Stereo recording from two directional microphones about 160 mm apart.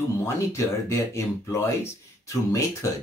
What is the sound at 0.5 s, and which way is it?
Speech, 20° left (ahead or behind).